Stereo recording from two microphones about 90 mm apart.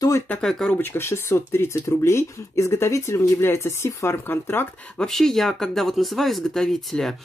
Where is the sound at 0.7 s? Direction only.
25° left (ahead or behind).